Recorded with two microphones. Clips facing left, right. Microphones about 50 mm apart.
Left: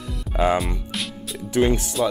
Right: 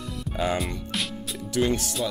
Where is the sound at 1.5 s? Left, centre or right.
Left.